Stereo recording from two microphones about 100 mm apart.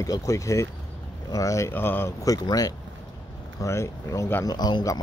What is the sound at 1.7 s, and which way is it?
Speech, 20° left (ahead or behind).